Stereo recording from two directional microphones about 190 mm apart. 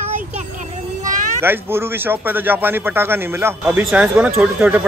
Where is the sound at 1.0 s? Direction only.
45° right (ahead or behind).